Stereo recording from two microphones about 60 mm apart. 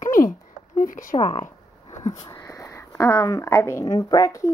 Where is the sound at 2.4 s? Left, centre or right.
Left.